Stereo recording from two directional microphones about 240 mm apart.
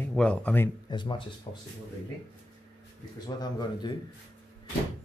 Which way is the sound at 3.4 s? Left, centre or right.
Centre.